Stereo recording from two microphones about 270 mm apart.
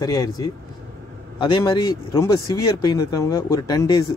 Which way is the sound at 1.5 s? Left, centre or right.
Centre.